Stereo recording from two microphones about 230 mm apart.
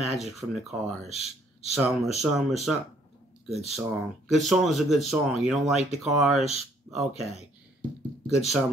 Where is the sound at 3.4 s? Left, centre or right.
Centre.